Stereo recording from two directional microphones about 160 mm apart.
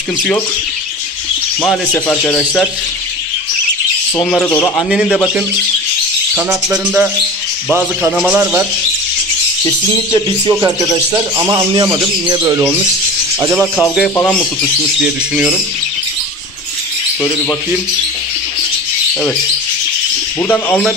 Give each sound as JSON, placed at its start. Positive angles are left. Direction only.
{"t": 1.6, "sound": "speech", "side_deg": 5}
{"t": 4.2, "sound": "speech", "side_deg": 5}
{"t": 4.9, "sound": "speech", "side_deg": 0}
{"t": 6.3, "sound": "cricket", "side_deg": -10}
{"t": 10.5, "sound": "speech", "side_deg": -20}
{"t": 13.4, "sound": "cricket", "side_deg": -15}
{"t": 13.7, "sound": "speech", "side_deg": 5}
{"t": 20.4, "sound": "speech", "side_deg": 10}